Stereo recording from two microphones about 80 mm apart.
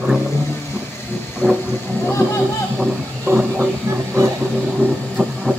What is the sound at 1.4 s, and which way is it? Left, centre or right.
Vehicle, centre.